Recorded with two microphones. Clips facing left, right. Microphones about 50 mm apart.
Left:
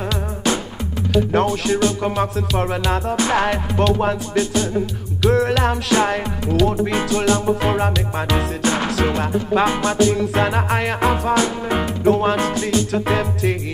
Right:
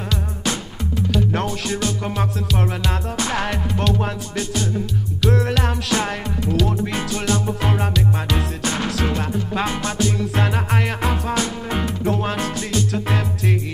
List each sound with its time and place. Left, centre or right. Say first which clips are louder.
1.1 s music: left 7 dB; centre